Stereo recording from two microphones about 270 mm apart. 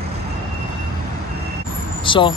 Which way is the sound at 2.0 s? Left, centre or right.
Centre.